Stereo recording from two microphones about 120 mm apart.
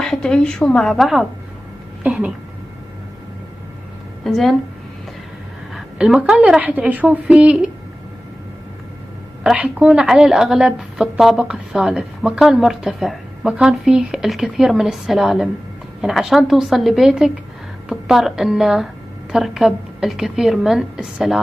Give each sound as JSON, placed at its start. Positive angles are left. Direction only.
{"t": 0.0, "sound": "a woman's voice", "side_deg": 5}
{"t": 2.0, "sound": "speech", "side_deg": -10}
{"t": 4.2, "sound": "a woman's voice", "side_deg": 0}
{"t": 5.8, "sound": "a woman's voice", "side_deg": -5}
{"t": 9.4, "sound": "a woman's voice", "side_deg": -10}